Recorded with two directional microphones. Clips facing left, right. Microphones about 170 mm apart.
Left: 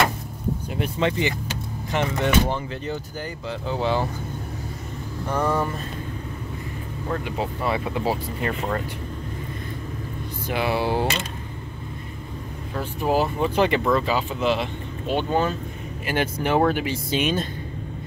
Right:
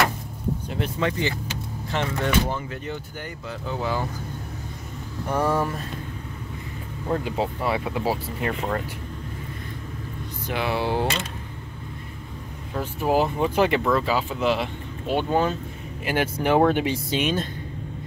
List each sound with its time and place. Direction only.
0.7 s speech: 10° left (ahead or behind)
0.9 s speech: 20° left (ahead or behind)
5.3 s speech: 5° right (ahead or behind)
7.1 s speech: 25° right (ahead or behind)
7.6 s speech: 10° right (ahead or behind)
10.4 s speech: 10° left (ahead or behind)
12.7 s speech: 15° right (ahead or behind)
17.1 s speech: 5° left (ahead or behind)